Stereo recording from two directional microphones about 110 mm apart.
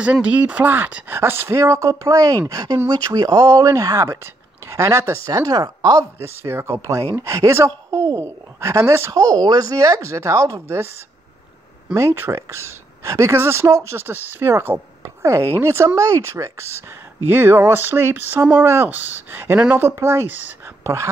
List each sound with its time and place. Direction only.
0.0 s a woman's voice: 10° right (ahead or behind); by 6.0 s 35° right (ahead or behind)
6.1 s a woman's voice: 20° right (ahead or behind)
11.9 s a woman's voice: 25° right (ahead or behind)